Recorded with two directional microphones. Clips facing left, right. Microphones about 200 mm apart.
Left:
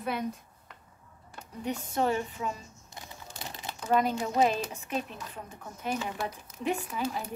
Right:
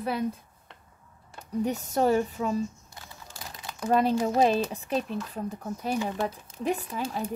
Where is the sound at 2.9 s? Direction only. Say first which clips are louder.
Left 1 dB; 20° left (ahead or behind).